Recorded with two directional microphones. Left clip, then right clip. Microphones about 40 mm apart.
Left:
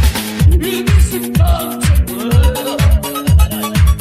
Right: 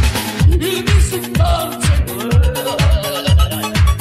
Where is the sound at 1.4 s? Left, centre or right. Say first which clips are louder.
Right 1 dB; right.